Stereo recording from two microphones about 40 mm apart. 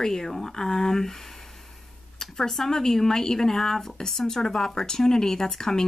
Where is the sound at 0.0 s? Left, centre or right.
Centre.